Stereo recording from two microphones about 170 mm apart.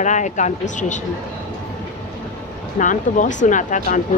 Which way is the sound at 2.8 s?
50° left (ahead or behind).